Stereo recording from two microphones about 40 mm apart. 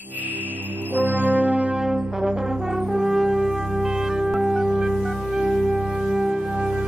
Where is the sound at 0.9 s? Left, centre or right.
Right.